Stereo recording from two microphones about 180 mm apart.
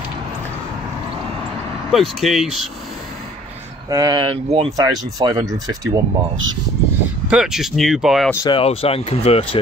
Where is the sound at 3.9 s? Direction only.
20° right (ahead or behind).